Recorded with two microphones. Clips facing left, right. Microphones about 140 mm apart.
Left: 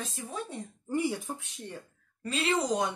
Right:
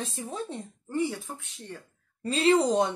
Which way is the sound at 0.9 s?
15° left (ahead or behind).